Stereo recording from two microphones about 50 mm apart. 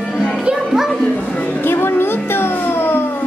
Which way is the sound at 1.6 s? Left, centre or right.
Left.